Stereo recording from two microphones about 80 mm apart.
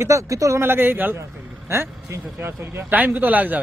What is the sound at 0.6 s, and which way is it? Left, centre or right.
Speech, right.